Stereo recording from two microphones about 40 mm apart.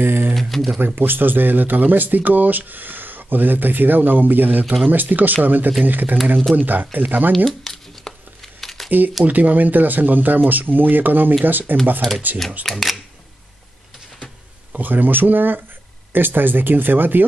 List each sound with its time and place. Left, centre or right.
0.0 s speech: right
0.4 s speech: centre
0.7 s speech: right
7.3 s a sound: centre
9.2 s speech: right
12.6 s speech: centre
14.7 s speech: right